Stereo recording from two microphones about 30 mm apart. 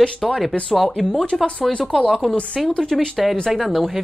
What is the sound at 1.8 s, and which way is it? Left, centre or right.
Speech, left.